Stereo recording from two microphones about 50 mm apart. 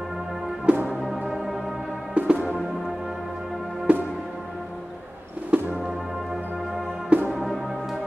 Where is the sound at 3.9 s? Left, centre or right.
Right.